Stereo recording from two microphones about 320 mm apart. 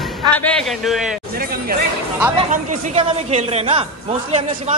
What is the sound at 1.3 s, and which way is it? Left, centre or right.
A man's voice, right.